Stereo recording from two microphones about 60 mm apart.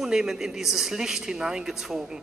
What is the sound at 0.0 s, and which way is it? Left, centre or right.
Speech, centre.